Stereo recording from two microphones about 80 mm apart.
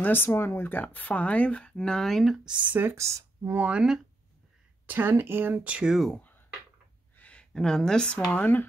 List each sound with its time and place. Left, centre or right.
0.0 s speech: left; by 2.7 s centre
2.7 s speech: right
3.0 s speech: right
3.5 s speech: centre
4.8 s speech: right
5.7 s speech: centre
7.2 s speech: centre
8.3 s speech: left